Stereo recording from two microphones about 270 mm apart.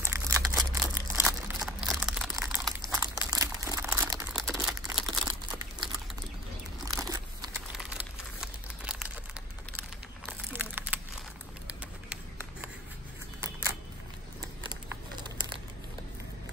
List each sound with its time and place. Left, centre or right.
0.0 s crumpling: centre
0.7 s crumpling: centre
4.3 s crumpling: centre
5.2 s crumpling: centre
6.8 s biting: centre
7.7 s crumpling: centre
9.8 s typing: centre
14.4 s crumpling: centre